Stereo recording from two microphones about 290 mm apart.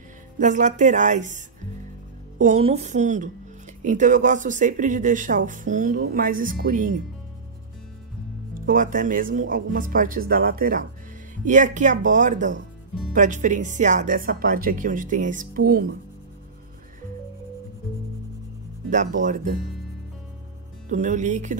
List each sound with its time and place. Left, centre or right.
0.4 s speech: right
8.5 s speech: right
18.9 s speech: right
20.9 s speech: right